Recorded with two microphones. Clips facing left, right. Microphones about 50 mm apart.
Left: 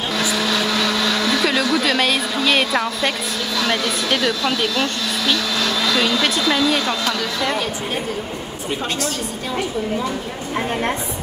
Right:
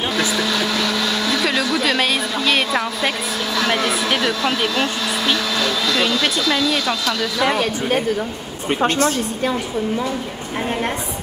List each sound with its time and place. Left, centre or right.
0.2 s blender: centre
3.5 s speech: centre
5.6 s a sound: centre
6.4 s a woman's voice: centre
8.6 s a woman's voice: right